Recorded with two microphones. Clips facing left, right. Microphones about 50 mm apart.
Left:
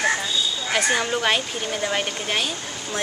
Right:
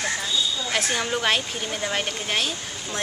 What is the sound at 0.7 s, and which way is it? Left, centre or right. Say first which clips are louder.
Speech: left 4 dB; centre.